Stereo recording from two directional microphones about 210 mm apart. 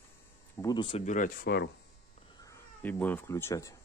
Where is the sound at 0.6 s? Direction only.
20° left (ahead or behind); by 1.7 s 50° left (ahead or behind).